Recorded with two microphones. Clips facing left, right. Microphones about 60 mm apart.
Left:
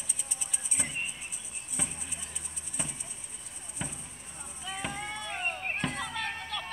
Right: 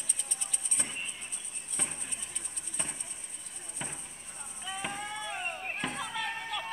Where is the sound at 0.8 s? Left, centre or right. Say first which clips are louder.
Left 2 dB; centre.